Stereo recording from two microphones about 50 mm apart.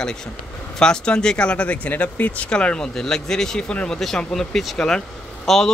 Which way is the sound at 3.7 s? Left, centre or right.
Left.